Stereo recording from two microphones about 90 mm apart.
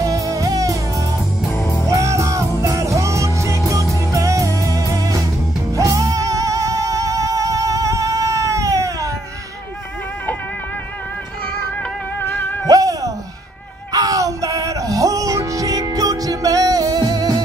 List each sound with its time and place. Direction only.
0.0 s music: 40° right (ahead or behind)
12.2 s music: 25° left (ahead or behind)
12.6 s a sound: 40° right (ahead or behind)
13.9 s music: 40° right (ahead or behind)